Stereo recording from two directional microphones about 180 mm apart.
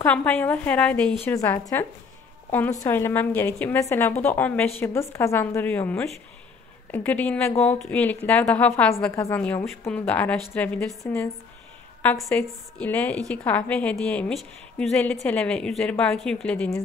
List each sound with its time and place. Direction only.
0.0 s a woman's voice: 10° left (ahead or behind)
12.2 s a woman's voice: 5° left (ahead or behind)